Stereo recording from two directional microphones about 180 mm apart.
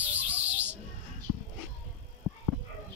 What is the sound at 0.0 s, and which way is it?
Bird, 10° right (ahead or behind).